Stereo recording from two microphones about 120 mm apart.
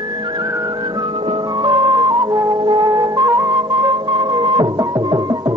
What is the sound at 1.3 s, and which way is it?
Music, 40° right (ahead or behind).